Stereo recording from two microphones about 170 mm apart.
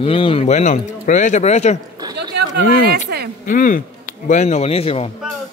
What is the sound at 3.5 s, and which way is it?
A man's voice, 50° left (ahead or behind).